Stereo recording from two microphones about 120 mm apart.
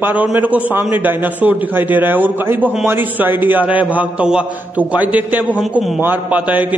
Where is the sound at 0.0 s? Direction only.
15° right (ahead or behind).